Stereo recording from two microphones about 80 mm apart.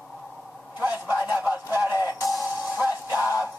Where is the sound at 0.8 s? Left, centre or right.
Right.